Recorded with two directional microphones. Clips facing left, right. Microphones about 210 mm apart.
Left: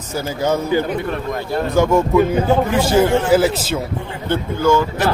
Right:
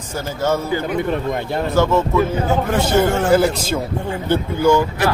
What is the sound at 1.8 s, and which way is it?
A man's voice, 15° left (ahead or behind).